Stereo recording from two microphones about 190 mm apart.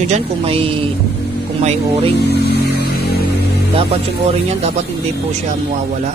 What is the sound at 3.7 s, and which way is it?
Speech, 30° right (ahead or behind).